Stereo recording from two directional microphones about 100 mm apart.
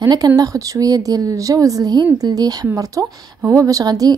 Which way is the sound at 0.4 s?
35° right (ahead or behind).